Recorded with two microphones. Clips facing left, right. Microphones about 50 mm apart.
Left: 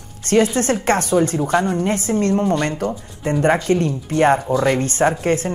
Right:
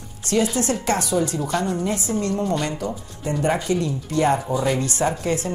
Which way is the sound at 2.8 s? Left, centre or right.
Left.